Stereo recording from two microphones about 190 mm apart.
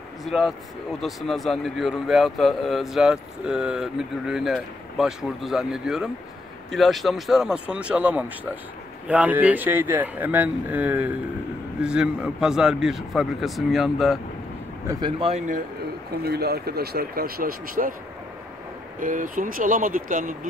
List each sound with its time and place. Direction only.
0.2 s speech: centre (ahead or behind)
14.9 s speech: 25° right (ahead or behind); by 15.6 s 40° right (ahead or behind)
16.3 s speech: 55° right (ahead or behind)
18.9 s speech: 45° right (ahead or behind)